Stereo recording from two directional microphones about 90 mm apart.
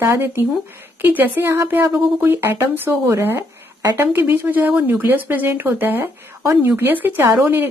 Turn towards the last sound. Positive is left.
turn(degrees=-30)  # may be behind; listen again after turning